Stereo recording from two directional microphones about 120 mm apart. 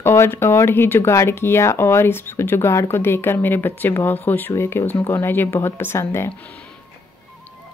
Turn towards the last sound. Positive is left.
turn(degrees=25)  # may be behind; listen again after turning